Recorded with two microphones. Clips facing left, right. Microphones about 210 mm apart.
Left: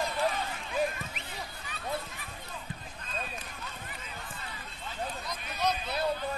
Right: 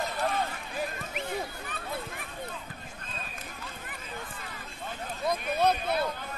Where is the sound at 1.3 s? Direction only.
55° right (ahead or behind).